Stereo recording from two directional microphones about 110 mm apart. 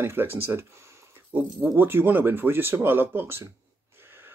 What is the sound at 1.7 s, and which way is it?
Speech, 20° right (ahead or behind).